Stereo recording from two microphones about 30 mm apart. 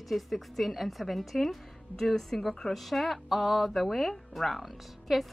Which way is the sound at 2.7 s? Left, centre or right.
Centre.